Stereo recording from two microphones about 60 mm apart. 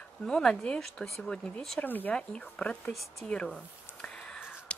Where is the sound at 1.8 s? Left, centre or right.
Left.